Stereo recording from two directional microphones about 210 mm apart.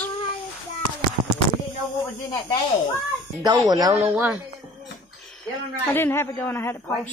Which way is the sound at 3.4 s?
20° right (ahead or behind).